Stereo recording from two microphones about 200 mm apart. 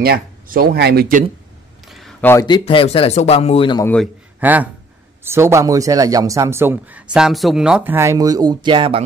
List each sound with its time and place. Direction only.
0.0 s speech: 50° right (ahead or behind)
1.9 s a sound: centre (ahead or behind)
2.2 s speech: 15° left (ahead or behind)
3.8 s a man's voice: 5° left (ahead or behind)
4.4 s speech: 10° right (ahead or behind); by 9.0 s 25° right (ahead or behind)